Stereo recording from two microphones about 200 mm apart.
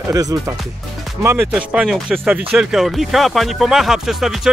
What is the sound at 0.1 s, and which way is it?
Speech, 15° right (ahead or behind).